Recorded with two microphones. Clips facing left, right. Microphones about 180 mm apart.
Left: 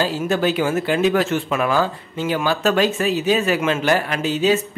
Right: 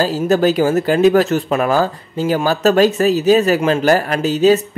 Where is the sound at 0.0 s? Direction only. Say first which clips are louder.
Right 5 dB; 40° right (ahead or behind).